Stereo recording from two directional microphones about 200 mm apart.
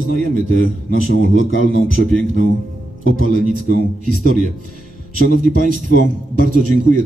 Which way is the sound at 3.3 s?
45° right (ahead or behind).